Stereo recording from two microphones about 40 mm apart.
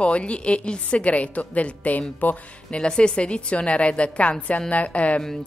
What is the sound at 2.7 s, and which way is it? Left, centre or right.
A woman's voice, left.